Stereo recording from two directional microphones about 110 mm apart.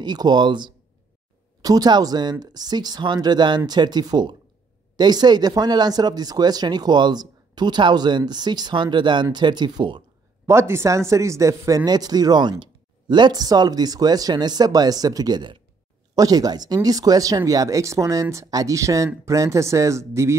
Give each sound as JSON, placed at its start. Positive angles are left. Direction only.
{"t": 0.0, "sound": "speech", "side_deg": -40}
{"t": 10.4, "sound": "speech", "side_deg": -25}